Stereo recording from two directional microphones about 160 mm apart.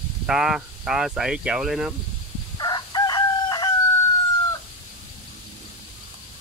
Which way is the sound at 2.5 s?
25° left (ahead or behind).